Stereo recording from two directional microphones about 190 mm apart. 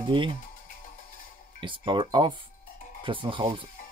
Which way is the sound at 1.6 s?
25° right (ahead or behind).